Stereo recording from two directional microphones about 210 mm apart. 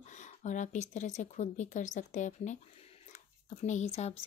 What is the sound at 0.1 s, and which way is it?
A woman's voice, 35° left (ahead or behind).